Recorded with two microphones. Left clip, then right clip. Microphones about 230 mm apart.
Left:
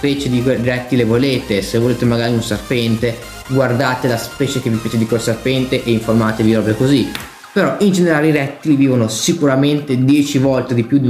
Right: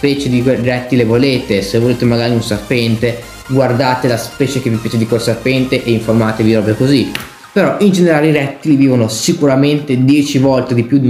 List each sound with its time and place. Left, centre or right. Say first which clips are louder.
0.0 s speech: right 3 dB; centre